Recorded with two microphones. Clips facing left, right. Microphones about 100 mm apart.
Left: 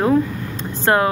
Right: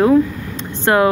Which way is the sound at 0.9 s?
35° left (ahead or behind).